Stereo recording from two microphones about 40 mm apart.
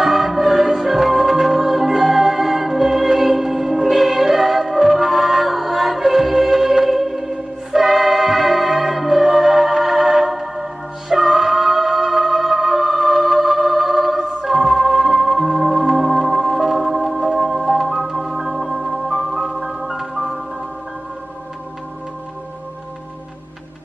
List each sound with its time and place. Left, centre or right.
0.0 s music: centre
16.3 s organ: centre
17.4 s music: centre
19.4 s music: centre